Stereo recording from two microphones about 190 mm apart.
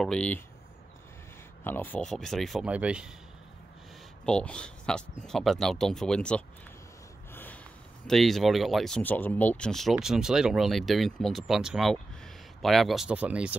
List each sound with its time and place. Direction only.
0.0 s speech: 5° left (ahead or behind)
1.6 s speech: 10° left (ahead or behind); by 3.1 s 5° right (ahead or behind)
4.3 s speech: 5° left (ahead or behind)
8.1 s speech: centre (ahead or behind)